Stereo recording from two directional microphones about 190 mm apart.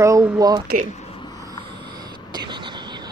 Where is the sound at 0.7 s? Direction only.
55° right (ahead or behind).